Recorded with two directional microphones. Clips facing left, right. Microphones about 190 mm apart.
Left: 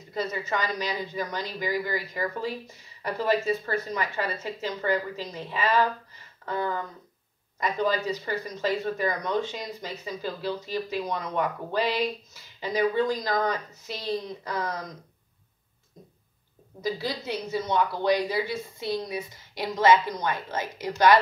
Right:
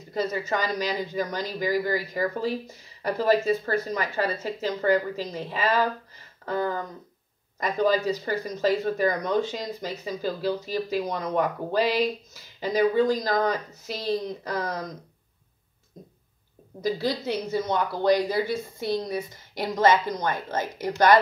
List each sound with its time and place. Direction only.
0.1 s speech: 40° right (ahead or behind)
16.8 s a woman's voice: 45° right (ahead or behind)